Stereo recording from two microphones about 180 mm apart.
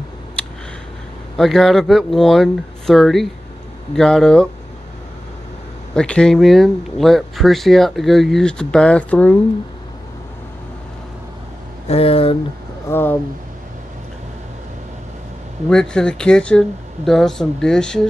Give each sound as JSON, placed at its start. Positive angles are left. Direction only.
{"t": 1.3, "sound": "speech", "side_deg": 0}
{"t": 5.9, "sound": "speech", "side_deg": 5}
{"t": 11.9, "sound": "speech", "side_deg": 30}
{"t": 12.9, "sound": "speech", "side_deg": 10}
{"t": 15.7, "sound": "speech", "side_deg": 5}